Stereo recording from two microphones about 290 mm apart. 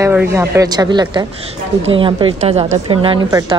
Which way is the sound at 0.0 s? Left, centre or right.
Centre.